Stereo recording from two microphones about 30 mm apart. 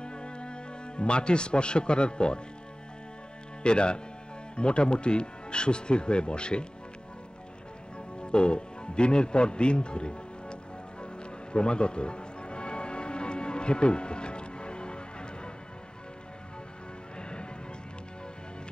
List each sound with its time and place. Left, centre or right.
0.0 s music: left
3.6 s speech: left
8.2 s music: left
17.2 s music: left